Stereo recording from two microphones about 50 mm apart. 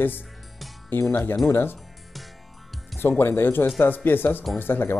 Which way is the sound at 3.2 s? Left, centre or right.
Left.